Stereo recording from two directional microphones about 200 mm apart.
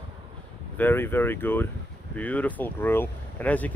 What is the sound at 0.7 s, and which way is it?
Speech, 10° left (ahead or behind).